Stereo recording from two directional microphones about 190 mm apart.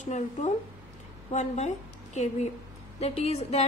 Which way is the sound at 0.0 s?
40° left (ahead or behind).